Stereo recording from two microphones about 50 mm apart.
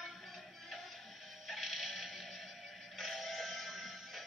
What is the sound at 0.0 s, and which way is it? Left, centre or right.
Music, centre.